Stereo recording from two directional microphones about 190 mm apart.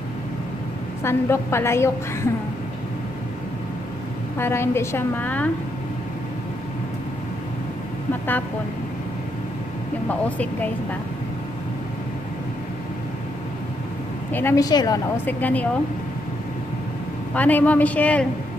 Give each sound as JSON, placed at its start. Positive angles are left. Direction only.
{"t": 1.0, "sound": "a woman's voice", "side_deg": 15}
{"t": 4.4, "sound": "a woman's voice", "side_deg": 15}
{"t": 10.0, "sound": "a woman's voice", "side_deg": 5}
{"t": 14.3, "sound": "a woman's voice", "side_deg": 15}
{"t": 15.2, "sound": "a woman's voice", "side_deg": 10}
{"t": 17.3, "sound": "a woman's voice", "side_deg": 10}